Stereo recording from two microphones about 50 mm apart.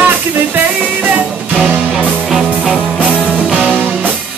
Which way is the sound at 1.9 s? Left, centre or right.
Centre.